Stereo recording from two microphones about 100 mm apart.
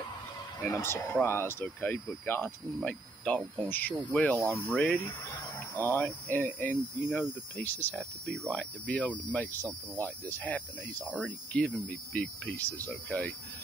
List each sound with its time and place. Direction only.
0.7 s speech: 25° left (ahead or behind)